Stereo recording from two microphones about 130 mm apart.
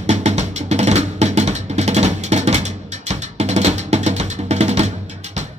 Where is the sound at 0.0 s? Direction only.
60° right (ahead or behind).